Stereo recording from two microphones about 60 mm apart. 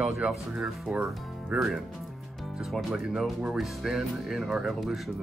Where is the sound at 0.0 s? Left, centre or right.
Centre.